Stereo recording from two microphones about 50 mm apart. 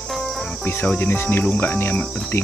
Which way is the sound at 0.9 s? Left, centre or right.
Left.